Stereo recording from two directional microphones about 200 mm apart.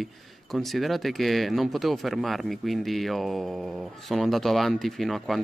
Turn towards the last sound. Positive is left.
turn(degrees=0)  # may be behind; listen again after turning